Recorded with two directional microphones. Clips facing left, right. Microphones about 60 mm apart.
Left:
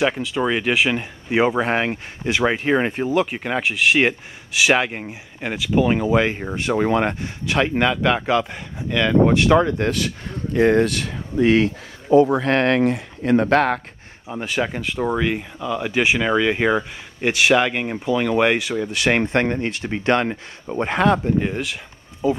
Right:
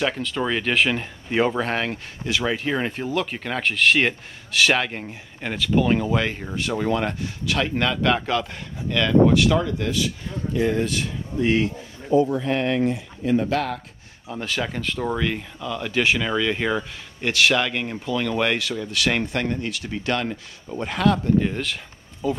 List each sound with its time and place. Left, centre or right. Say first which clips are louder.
0.0 s speech: left 4 dB; centre
7.9 s speech: left 3 dB; centre
9.4 s speech: left 5 dB; left
14.2 s speech: left 4 dB; centre
21.4 s speech: left 1 dB; centre